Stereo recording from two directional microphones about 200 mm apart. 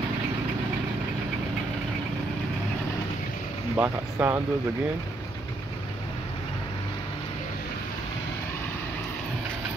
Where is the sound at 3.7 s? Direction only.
10° right (ahead or behind).